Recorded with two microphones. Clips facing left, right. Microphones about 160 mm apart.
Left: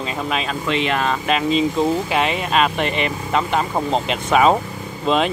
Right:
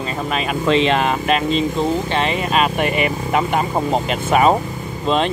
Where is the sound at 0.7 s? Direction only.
30° right (ahead or behind).